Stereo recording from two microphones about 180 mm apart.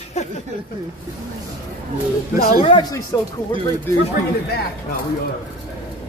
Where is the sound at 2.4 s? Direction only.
50° left (ahead or behind).